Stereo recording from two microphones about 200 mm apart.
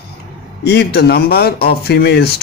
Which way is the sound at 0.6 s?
55° left (ahead or behind).